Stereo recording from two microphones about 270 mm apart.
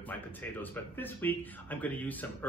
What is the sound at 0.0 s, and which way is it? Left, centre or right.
A man's voice, centre.